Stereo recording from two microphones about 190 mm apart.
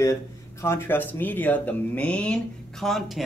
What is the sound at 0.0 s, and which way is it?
Speech, 15° left (ahead or behind).